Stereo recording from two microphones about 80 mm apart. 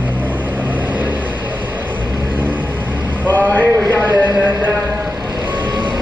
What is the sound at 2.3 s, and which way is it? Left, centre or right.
Vehicle, right.